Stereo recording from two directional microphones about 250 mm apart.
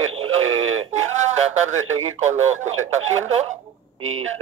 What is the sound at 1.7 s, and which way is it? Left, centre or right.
Speech, right.